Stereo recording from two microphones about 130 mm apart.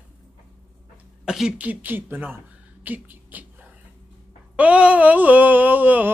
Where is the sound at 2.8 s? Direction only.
15° right (ahead or behind).